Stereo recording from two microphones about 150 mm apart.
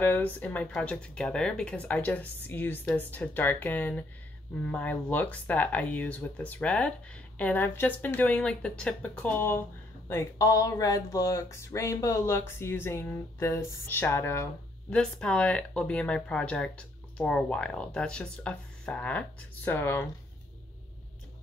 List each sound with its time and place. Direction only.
0.0 s speech: 10° left (ahead or behind)